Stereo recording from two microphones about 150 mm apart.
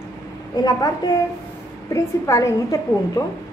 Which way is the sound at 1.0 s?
25° left (ahead or behind).